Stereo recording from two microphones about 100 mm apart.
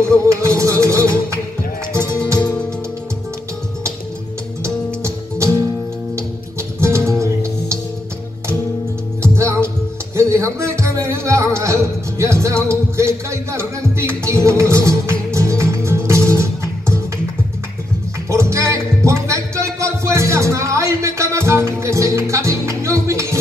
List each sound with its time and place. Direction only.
0.0 s music: 30° right (ahead or behind)
4.6 s music: 30° right (ahead or behind)
6.8 s music: 30° right (ahead or behind)
9.2 s music: 30° right (ahead or behind)
18.3 s music: 30° right (ahead or behind)